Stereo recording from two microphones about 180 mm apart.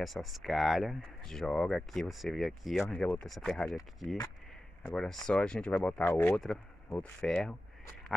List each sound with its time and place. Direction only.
0.0 s speech: centre (ahead or behind)
4.8 s speech: 5° left (ahead or behind)